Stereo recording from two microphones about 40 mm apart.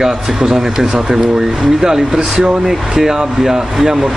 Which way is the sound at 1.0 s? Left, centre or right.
Centre.